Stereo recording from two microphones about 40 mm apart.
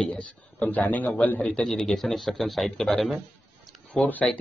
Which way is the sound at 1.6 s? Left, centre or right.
Centre.